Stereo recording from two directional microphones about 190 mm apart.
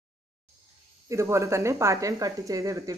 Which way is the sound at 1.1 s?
15° right (ahead or behind).